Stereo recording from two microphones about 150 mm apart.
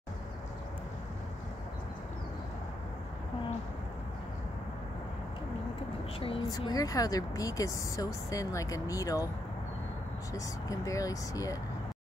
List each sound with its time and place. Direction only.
6.1 s speech: 40° left (ahead or behind)
6.7 s speech: 25° left (ahead or behind)
10.3 s speech: 20° left (ahead or behind)